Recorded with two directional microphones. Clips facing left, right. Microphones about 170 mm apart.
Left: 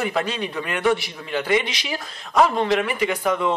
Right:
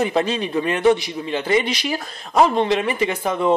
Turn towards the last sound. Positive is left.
turn(degrees=-25)  # may be behind; listen again after turning